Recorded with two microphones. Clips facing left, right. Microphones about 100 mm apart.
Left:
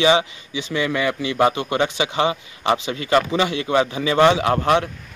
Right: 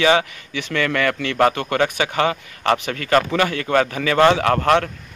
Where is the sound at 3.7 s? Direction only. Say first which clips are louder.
Right 1 dB; 50° right (ahead or behind).